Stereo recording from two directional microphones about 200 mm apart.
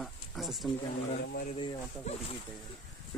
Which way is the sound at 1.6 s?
25° left (ahead or behind).